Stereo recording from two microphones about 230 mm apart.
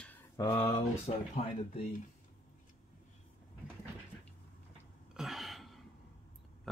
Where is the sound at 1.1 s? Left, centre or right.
Left.